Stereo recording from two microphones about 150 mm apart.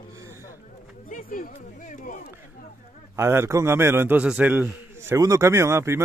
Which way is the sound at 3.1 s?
15° right (ahead or behind).